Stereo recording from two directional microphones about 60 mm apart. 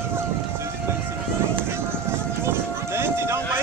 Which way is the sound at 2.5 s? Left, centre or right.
Right.